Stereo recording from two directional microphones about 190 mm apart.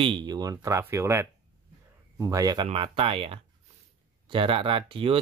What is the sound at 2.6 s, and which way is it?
Speech, 30° right (ahead or behind).